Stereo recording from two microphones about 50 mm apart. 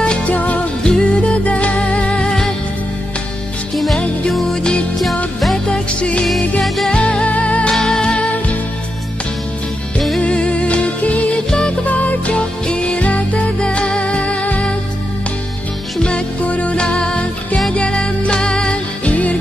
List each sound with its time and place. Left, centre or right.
0.3 s music: left
0.8 s music: centre
3.7 s music: centre
5.7 s music: left
7.8 s music: centre
8.2 s music: left
10.2 s music: left
16.0 s music: left